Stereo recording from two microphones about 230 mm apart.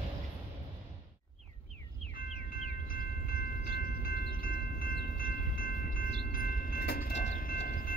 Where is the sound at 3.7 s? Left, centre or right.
Left.